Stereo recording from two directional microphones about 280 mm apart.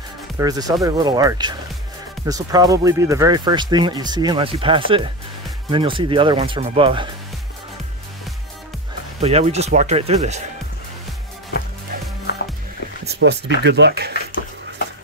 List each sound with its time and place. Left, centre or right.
0.4 s speech: centre
9.2 s speech: right
13.0 s a sound: right
13.6 s speech: right